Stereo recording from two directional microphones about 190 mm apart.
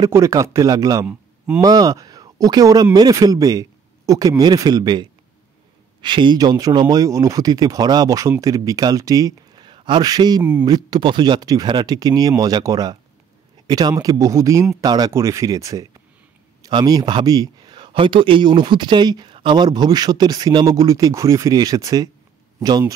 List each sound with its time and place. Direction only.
0.0 s speech: 15° right (ahead or behind)